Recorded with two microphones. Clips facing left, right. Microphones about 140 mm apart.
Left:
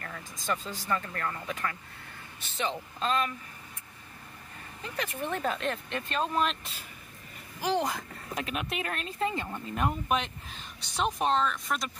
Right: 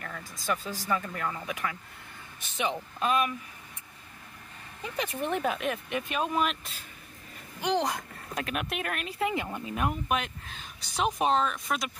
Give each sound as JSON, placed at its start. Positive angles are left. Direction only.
{"t": 0.0, "sound": "speech", "side_deg": -5}
{"t": 4.8, "sound": "speech", "side_deg": -15}